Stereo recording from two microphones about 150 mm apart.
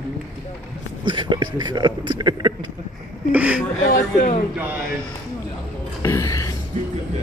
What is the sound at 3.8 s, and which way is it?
Speech, 60° left (ahead or behind).